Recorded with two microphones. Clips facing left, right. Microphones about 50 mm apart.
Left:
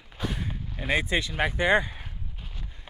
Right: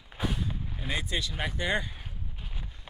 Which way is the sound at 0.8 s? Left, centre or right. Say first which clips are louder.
Left 7 dB; left.